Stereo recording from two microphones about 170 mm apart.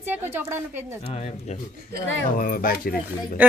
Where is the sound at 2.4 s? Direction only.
60° left (ahead or behind).